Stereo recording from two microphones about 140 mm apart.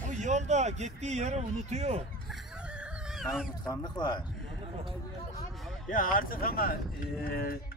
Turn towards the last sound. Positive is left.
turn(degrees=90)